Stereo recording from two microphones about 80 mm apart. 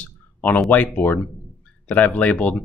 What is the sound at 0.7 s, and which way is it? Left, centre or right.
Speech, centre.